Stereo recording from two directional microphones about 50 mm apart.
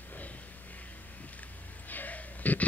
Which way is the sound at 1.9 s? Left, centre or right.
Left.